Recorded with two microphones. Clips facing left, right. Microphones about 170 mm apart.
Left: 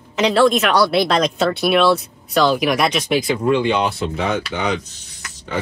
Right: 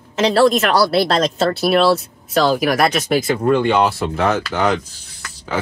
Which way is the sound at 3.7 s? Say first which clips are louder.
Right 3 dB; 65° right (ahead or behind).